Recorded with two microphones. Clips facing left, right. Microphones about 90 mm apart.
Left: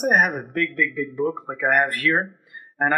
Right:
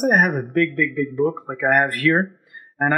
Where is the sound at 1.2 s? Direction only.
20° right (ahead or behind).